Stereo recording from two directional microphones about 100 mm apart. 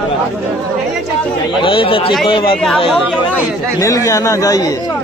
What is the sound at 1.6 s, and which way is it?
Speech, 60° left (ahead or behind).